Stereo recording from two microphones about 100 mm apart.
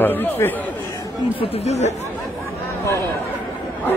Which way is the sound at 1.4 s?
85° left.